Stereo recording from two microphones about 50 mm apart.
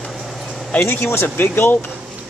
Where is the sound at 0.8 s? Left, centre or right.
Left.